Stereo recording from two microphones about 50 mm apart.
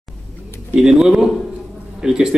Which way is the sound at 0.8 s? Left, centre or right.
Centre.